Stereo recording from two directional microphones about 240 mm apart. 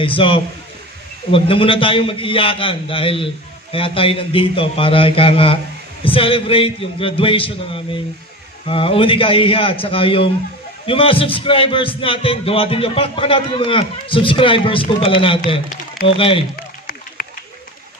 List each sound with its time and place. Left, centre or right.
0.0 s a man's voice: left